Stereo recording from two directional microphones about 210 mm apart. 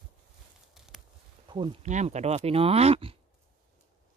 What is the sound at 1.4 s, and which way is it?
Speech, 25° right (ahead or behind).